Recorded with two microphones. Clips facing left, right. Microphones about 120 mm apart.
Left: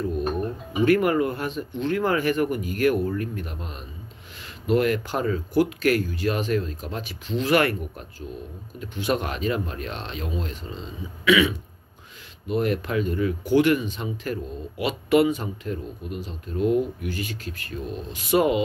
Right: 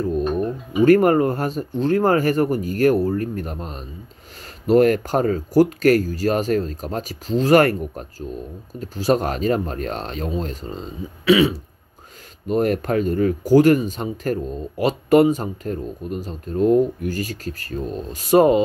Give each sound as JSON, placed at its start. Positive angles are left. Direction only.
{"t": 0.7, "sound": "speech", "side_deg": -40}